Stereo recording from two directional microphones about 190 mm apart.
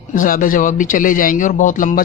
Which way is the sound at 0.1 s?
45° left (ahead or behind).